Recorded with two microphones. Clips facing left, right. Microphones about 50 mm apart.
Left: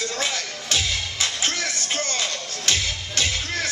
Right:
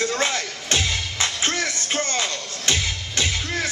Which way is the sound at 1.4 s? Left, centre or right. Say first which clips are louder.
Right 2 dB; right.